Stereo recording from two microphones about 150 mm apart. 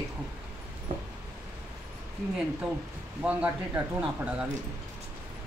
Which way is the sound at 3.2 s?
10° right (ahead or behind).